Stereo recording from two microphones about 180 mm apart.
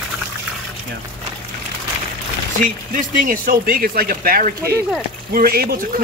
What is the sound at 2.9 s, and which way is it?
Speech, 50° right (ahead or behind).